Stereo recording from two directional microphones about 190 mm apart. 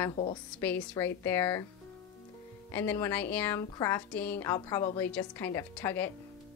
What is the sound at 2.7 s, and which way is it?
A woman's voice, 10° left (ahead or behind).